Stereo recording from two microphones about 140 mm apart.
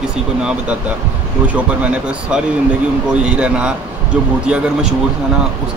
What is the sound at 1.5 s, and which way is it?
Speech, 10° right (ahead or behind).